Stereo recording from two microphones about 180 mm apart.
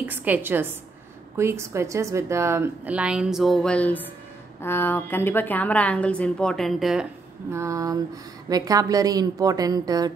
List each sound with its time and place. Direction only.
0.0 s a woman's voice: 10° right (ahead or behind)
7.5 s a woman's voice: 15° right (ahead or behind)